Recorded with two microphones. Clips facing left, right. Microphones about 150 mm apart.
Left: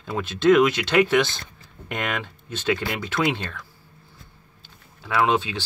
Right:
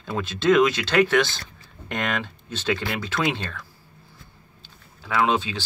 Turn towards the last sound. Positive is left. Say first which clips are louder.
# left 1 dB
turn(degrees=15)  # may be behind; listen again after turning